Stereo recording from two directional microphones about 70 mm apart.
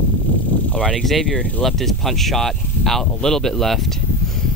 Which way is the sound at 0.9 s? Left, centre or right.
Centre.